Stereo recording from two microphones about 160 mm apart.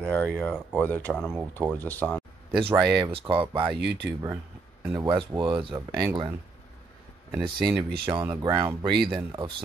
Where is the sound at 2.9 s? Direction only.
30° right (ahead or behind).